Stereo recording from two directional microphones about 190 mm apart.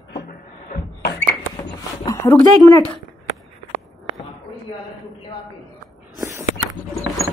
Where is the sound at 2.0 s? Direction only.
15° left (ahead or behind).